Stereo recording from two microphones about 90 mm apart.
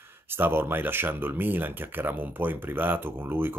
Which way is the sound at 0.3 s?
25° right (ahead or behind).